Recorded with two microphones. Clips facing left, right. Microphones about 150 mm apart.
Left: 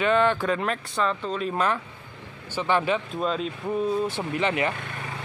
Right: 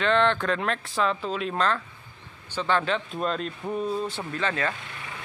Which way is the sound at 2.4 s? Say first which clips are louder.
Left 2 dB; 10° left (ahead or behind).